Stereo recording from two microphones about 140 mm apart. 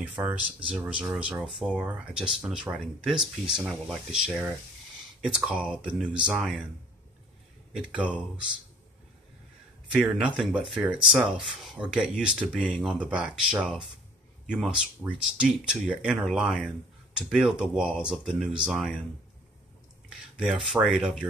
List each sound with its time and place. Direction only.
0.2 s speech: 20° right (ahead or behind)
0.7 s speech: 10° right (ahead or behind)
7.7 s speech: 5° right (ahead or behind)
10.1 s speech: 5° right (ahead or behind)
12.7 s speech: 5° left (ahead or behind)
13.1 s speech: 5° right (ahead or behind)
20.1 s speech: 5° right (ahead or behind)